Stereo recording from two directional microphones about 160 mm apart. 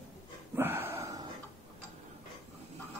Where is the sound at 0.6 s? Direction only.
15° right (ahead or behind).